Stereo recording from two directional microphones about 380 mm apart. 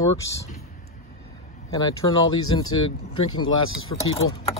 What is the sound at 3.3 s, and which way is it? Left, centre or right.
Speech, left.